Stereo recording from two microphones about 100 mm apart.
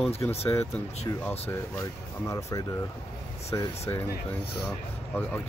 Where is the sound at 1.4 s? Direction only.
30° left (ahead or behind).